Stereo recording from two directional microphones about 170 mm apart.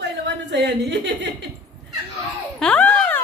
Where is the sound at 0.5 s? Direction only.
90° right.